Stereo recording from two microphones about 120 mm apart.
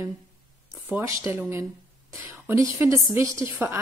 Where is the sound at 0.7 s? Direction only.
20° right (ahead or behind).